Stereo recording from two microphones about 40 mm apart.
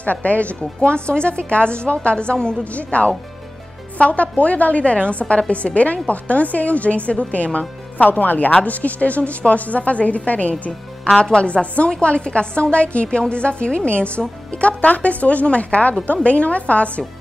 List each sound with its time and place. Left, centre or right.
0.0 s a woman's voice: left
0.6 s a woman's voice: left
2.6 s a woman's voice: left
8.1 s a woman's voice: left
11.1 s a woman's voice: left